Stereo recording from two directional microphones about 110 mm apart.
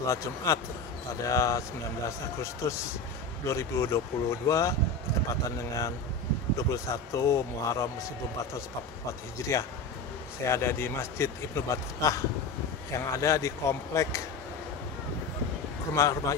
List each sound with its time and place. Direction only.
0.0 s a man's voice: 30° left (ahead or behind)
9.4 s a man's voice: 25° left (ahead or behind)
15.9 s a man's voice: 30° left (ahead or behind)